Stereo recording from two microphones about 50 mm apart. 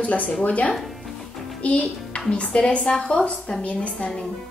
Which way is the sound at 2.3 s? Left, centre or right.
Left.